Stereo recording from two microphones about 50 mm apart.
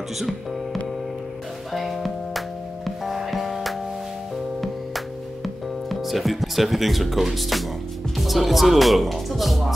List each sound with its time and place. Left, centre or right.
1.7 s music: centre
8.2 s speech: centre